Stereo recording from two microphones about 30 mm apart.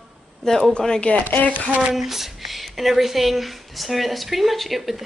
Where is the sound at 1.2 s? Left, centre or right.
Left.